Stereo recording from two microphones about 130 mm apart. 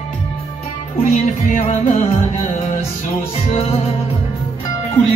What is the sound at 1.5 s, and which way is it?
Music, 60° left (ahead or behind).